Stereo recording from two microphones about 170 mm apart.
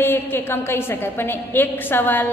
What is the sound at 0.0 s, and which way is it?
A woman's voice, 15° left (ahead or behind).